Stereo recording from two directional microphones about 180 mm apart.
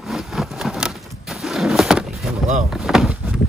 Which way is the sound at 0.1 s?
Centre (ahead or behind).